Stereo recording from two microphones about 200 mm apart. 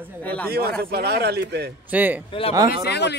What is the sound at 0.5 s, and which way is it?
Speech, 50° right (ahead or behind).